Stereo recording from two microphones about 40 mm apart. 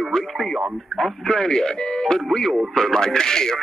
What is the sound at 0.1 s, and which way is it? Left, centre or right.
Speech, centre.